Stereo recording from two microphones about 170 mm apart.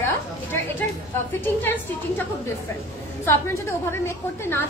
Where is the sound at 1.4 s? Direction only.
10° left (ahead or behind).